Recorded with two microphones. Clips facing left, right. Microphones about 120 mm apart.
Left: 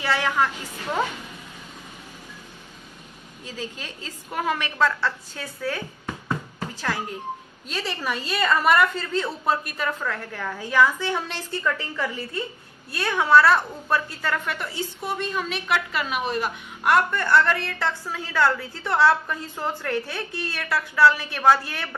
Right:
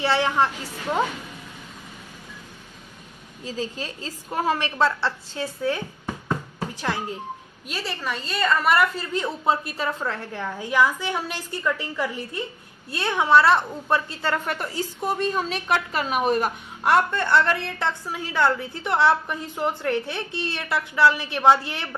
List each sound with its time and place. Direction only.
0.0 s a woman's voice: 30° right (ahead or behind)
3.4 s a woman's voice: 35° right (ahead or behind)
6.2 s music: 20° right (ahead or behind)
7.6 s a woman's voice: 5° right (ahead or behind)
9.1 s a woman's voice: 15° right (ahead or behind); by 16.5 s 45° right (ahead or behind)
16.8 s a woman's voice: 25° right (ahead or behind)